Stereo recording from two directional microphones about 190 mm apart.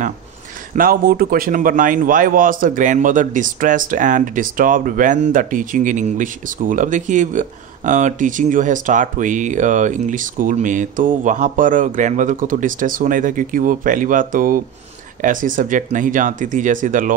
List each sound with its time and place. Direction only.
0.7 s a man's voice: 50° right (ahead or behind)